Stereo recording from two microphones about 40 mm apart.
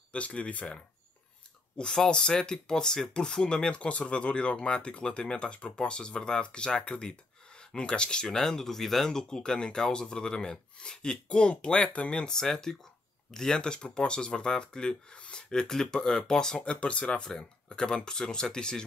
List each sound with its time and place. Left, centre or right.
0.1 s speech: left
1.8 s speech: centre; by 12.3 s left
12.3 s speech: centre
16.6 s speech: left